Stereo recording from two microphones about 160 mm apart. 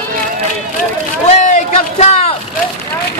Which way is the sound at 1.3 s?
45° left (ahead or behind).